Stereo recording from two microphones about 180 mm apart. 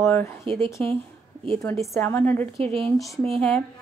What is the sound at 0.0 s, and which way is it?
A woman's voice, 15° left (ahead or behind).